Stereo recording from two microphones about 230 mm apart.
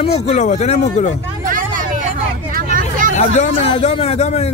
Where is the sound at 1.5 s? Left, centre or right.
Right.